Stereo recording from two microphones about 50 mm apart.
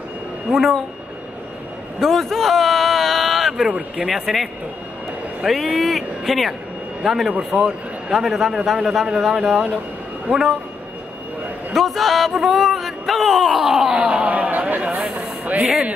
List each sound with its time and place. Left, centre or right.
0.5 s speech: centre
2.0 s a sound: centre
3.9 s speech: centre
7.3 s a man's voice: right
8.1 s speech: centre
11.7 s speech: centre
13.9 s a sound: right